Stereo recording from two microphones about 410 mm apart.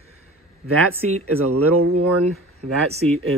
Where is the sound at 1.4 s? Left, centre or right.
Right.